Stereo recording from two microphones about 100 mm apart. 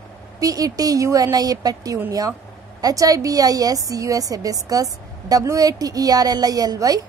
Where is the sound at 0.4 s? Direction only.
35° right (ahead or behind).